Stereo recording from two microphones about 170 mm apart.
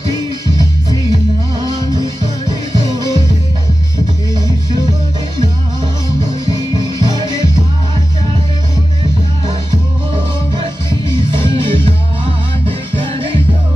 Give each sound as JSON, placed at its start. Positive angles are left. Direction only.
{"t": 1.6, "sound": "music", "side_deg": -25}
{"t": 7.0, "sound": "music", "side_deg": -25}
{"t": 10.5, "sound": "music", "side_deg": -25}